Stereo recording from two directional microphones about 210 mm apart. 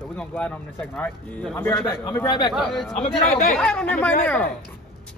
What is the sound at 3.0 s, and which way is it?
Speech, 30° left (ahead or behind).